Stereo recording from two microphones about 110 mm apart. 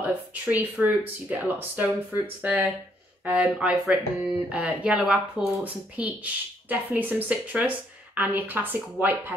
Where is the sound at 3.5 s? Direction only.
Centre (ahead or behind); by 9.3 s 15° right (ahead or behind).